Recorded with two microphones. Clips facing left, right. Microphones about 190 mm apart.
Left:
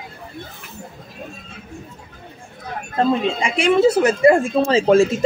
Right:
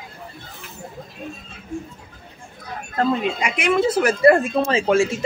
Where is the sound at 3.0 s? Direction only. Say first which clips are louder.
Left 2 dB; 25° left (ahead or behind).